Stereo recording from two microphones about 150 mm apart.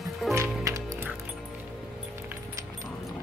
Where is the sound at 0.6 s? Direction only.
20° right (ahead or behind).